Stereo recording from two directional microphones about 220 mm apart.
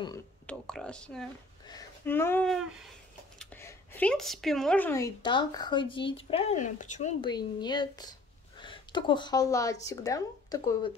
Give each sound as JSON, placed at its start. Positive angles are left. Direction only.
{"t": 0.5, "sound": "a woman's voice", "side_deg": 5}
{"t": 7.2, "sound": "speech", "side_deg": 20}